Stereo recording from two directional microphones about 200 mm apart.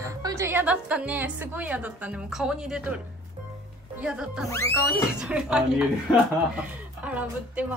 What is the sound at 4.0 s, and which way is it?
A woman's voice, 5° right (ahead or behind).